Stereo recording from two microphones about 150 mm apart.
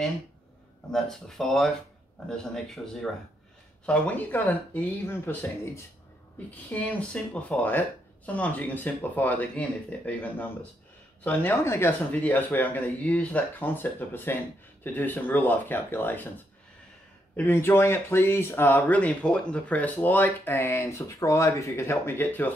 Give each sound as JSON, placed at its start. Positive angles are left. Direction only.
{"t": 0.9, "sound": "speech", "side_deg": 5}
{"t": 6.5, "sound": "speech", "side_deg": 10}
{"t": 17.5, "sound": "speech", "side_deg": 15}